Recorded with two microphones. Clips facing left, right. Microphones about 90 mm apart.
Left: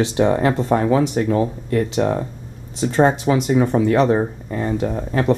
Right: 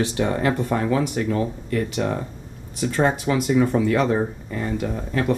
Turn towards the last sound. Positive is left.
turn(degrees=35)  # may be behind; listen again after turning